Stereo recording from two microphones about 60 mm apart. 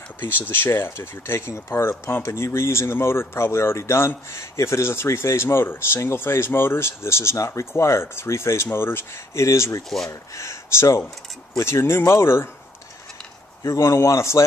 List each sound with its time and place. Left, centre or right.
0.5 s speech: left
9.4 s speech: left
13.7 s speech: left